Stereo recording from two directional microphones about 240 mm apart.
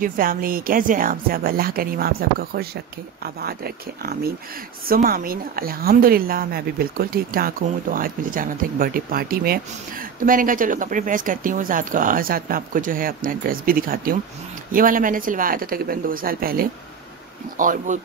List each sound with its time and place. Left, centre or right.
0.0 s a woman's voice: right